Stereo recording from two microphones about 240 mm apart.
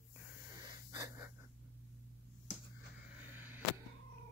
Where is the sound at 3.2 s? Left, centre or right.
Centre.